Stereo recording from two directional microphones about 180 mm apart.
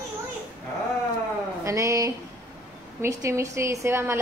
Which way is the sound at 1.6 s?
15° right (ahead or behind).